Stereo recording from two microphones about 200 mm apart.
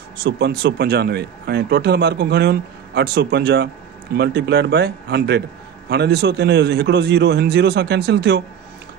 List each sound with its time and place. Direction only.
0.2 s speech: 50° right (ahead or behind)